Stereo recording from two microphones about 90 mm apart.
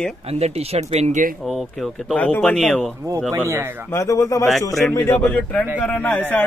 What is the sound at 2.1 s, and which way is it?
Speech, 15° left (ahead or behind).